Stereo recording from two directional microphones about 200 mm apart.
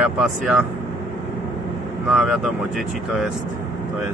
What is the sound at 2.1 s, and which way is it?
Speech, centre (ahead or behind).